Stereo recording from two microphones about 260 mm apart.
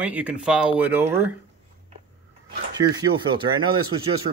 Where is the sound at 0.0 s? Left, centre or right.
Centre.